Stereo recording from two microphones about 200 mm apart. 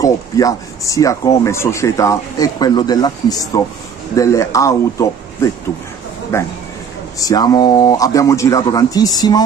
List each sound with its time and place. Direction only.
0.0 s speech: 15° left (ahead or behind)